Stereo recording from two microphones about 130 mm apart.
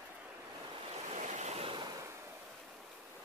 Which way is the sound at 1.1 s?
65° right (ahead or behind).